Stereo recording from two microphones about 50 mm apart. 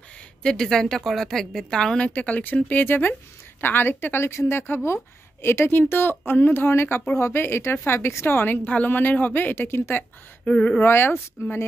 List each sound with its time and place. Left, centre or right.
0.4 s a woman's voice: centre
2.0 s a woman's voice: left
6.7 s a woman's voice: left
9.7 s a woman's voice: left
10.4 s speech: left
10.9 s speech: left